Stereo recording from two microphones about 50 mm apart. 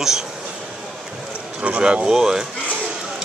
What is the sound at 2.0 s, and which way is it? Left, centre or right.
Speech, centre.